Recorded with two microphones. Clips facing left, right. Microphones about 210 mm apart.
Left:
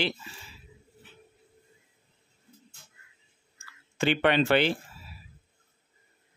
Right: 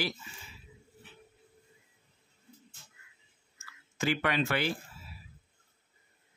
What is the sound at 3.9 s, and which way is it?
Speech, 30° left (ahead or behind).